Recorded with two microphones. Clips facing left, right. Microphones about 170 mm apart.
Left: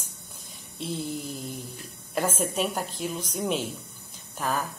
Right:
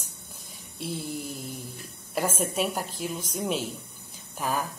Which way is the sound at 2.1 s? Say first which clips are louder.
Even; 10° right (ahead or behind).